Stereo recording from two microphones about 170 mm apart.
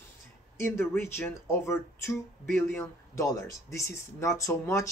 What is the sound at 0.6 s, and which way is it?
Speech, 15° left (ahead or behind).